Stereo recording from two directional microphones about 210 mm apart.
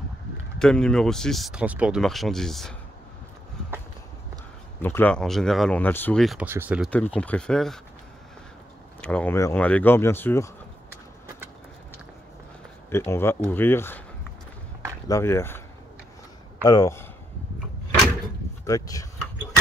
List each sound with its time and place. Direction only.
0.6 s speech: 5° left (ahead or behind)
4.8 s speech: 10° left (ahead or behind); by 6.9 s 5° right (ahead or behind)
7.2 s speech: 5° left (ahead or behind)
9.0 s speech: 5° left (ahead or behind)
12.9 s speech: 10° left (ahead or behind)
15.0 s speech: 15° left (ahead or behind)
16.6 s speech: 15° left (ahead or behind)
18.7 s speech: 15° left (ahead or behind)